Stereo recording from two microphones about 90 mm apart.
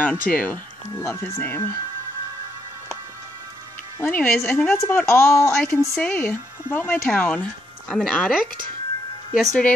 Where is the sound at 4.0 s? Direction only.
20° left (ahead or behind).